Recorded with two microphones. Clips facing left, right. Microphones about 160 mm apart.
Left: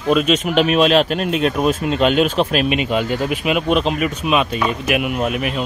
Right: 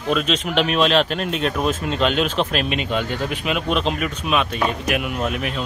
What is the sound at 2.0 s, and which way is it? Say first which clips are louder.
Speech: left 5 dB; 50° left (ahead or behind).